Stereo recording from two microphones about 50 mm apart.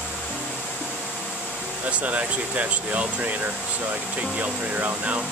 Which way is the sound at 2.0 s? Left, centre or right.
Right.